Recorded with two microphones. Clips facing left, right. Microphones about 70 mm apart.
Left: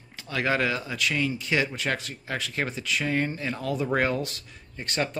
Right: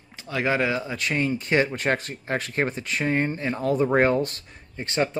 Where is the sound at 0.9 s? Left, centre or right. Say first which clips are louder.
Right 2 dB; right.